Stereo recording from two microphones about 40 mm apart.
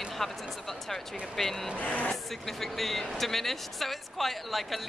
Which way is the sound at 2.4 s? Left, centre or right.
Centre.